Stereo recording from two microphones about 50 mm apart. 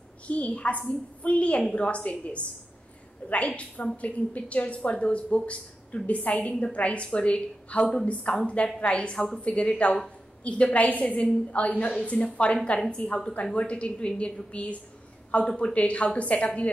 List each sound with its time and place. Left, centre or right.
0.3 s a woman's voice: left